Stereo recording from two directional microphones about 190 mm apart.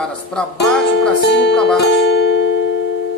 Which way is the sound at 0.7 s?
65° left (ahead or behind).